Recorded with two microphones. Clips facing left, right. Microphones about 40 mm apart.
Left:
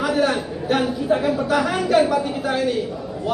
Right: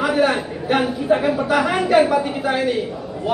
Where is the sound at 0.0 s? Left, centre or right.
Centre.